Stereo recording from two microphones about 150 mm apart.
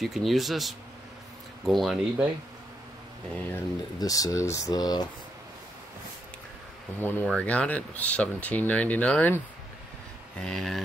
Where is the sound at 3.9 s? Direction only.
25° left (ahead or behind).